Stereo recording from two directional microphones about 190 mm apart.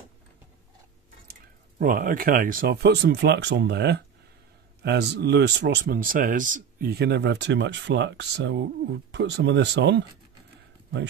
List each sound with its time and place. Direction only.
1.8 s speech: 45° right (ahead or behind); by 10.0 s 65° right (ahead or behind)